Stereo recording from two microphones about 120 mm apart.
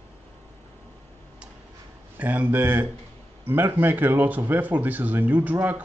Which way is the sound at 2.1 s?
15° right (ahead or behind).